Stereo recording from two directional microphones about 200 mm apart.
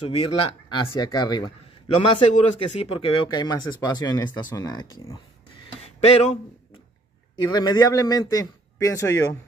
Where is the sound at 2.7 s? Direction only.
30° left (ahead or behind).